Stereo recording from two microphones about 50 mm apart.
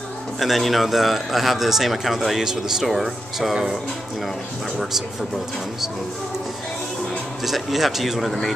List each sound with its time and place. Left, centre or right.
0.4 s speech: centre
7.4 s speech: centre